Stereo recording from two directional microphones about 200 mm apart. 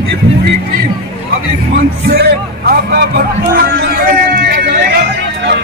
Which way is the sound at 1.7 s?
50° right (ahead or behind).